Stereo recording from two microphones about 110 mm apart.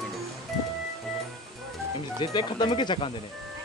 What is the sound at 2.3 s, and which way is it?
Speech, 40° left (ahead or behind).